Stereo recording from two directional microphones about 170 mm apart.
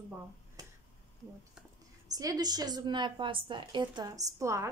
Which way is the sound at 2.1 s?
20° right (ahead or behind).